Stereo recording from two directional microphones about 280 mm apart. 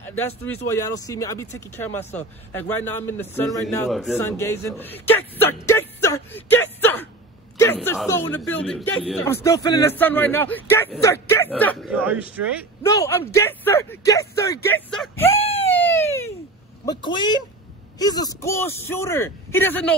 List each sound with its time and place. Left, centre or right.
0.7 s speech: centre
12.8 s speech: centre
15.7 s a sound: centre
16.8 s speech: centre